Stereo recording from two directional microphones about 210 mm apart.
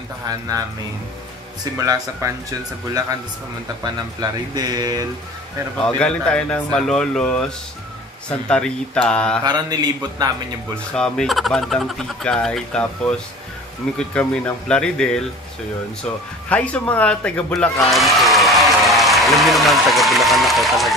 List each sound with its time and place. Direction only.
1.6 s speech: 15° right (ahead or behind)
3.8 s speech: 20° right (ahead or behind)
5.9 s speech: 5° left (ahead or behind)
9.4 s speech: 20° right (ahead or behind)
11.0 s speech: centre (ahead or behind)
16.4 s a man's voice: 5° left (ahead or behind)